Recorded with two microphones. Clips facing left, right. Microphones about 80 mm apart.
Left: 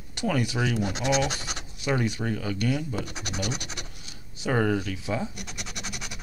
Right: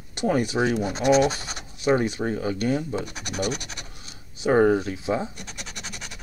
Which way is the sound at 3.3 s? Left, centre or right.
Right.